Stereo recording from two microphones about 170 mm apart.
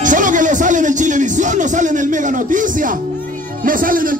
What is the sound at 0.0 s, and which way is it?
Speech, 50° right (ahead or behind).